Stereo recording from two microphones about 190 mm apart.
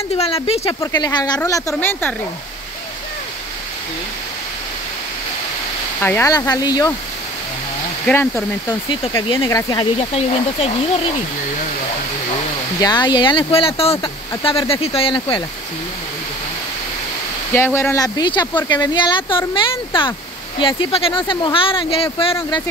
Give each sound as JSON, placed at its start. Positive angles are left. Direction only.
{"t": 0.2, "sound": "speech", "side_deg": 30}
{"t": 0.7, "sound": "speech", "side_deg": 20}
{"t": 5.9, "sound": "speech", "side_deg": 10}
{"t": 8.1, "sound": "speech", "side_deg": 10}
{"t": 9.3, "sound": "speech", "side_deg": 20}
{"t": 12.8, "sound": "speech", "side_deg": 20}
{"t": 17.6, "sound": "speech", "side_deg": 10}